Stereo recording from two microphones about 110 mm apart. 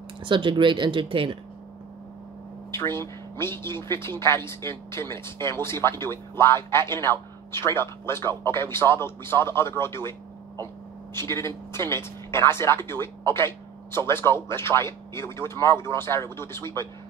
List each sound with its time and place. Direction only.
0.2 s speech: 45° right (ahead or behind)
2.7 s speech: 25° left (ahead or behind)
11.1 s speech: 25° left (ahead or behind)